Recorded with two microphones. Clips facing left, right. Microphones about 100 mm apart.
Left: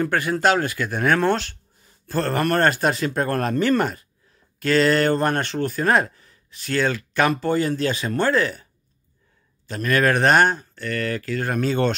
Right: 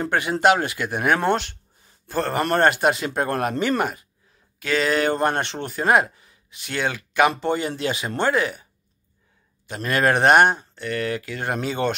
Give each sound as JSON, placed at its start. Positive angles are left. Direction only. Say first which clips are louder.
{"t": 0.0, "sound": "speech", "louder": "right 1 dB", "side_deg": -20}
{"t": 9.8, "sound": "speech", "louder": "even", "side_deg": -25}